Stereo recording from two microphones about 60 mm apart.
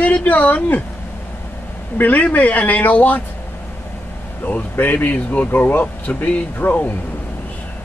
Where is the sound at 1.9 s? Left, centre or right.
Left.